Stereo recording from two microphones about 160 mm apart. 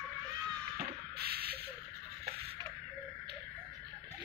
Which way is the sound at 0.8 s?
80° right.